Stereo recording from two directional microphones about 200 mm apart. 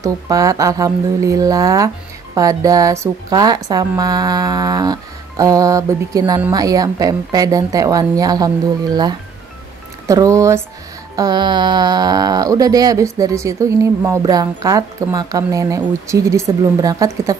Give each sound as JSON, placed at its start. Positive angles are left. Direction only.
{"t": 0.0, "sound": "speech", "side_deg": -15}
{"t": 10.0, "sound": "speech", "side_deg": -15}